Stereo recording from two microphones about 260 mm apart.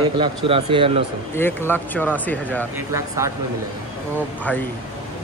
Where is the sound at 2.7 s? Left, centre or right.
Centre.